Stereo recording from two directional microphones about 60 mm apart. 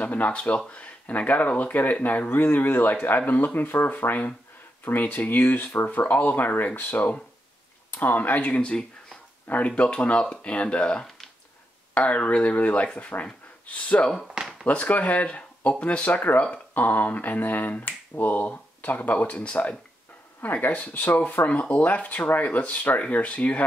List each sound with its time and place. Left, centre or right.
0.0 s speech: left
14.2 s a sound: centre
14.7 s speech: left